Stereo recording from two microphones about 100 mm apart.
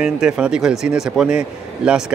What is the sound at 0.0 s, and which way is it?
Speech, 5° right (ahead or behind).